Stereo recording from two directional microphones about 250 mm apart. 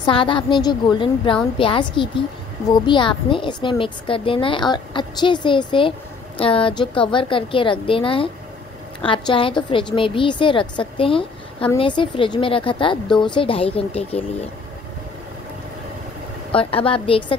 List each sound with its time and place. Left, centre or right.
0.0 s a woman's voice: centre
16.5 s a woman's voice: left